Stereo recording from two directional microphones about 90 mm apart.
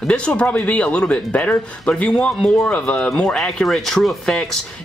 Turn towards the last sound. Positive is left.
turn(degrees=5)  # may be behind; listen again after turning